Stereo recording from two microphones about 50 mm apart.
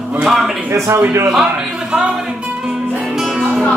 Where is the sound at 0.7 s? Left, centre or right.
Right.